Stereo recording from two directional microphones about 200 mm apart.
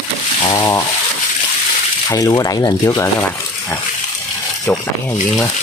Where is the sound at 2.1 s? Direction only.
15° left (ahead or behind).